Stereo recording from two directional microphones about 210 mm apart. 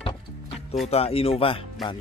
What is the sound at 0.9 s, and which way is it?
Speech, 30° left (ahead or behind).